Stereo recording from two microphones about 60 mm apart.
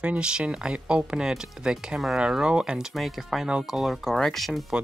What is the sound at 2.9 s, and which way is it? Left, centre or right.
Speech, centre.